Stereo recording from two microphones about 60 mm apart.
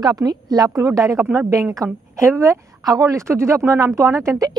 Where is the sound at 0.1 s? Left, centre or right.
Right.